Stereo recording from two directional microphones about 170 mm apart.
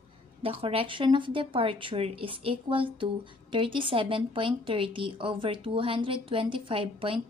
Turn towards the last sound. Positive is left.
turn(degrees=-30)  # may be behind; listen again after turning